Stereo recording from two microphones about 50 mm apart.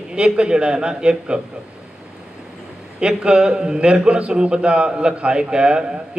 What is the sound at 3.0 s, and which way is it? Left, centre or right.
A man's voice, centre.